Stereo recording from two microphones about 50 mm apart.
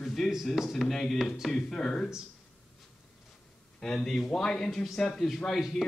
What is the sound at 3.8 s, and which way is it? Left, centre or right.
Speech, centre.